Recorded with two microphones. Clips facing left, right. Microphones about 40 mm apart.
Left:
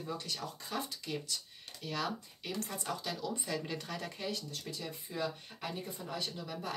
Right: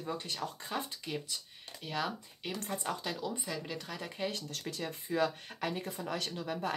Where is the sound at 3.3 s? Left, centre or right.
Centre.